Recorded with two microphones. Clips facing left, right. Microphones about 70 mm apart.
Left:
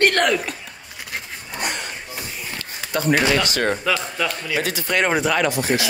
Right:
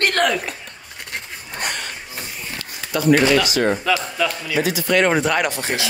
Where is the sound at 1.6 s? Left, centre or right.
Right.